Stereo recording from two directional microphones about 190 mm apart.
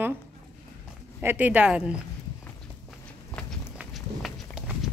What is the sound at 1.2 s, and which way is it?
Speech, 10° right (ahead or behind).